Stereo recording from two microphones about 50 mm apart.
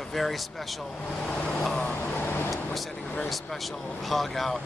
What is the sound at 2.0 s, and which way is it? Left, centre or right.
Vehicle, left.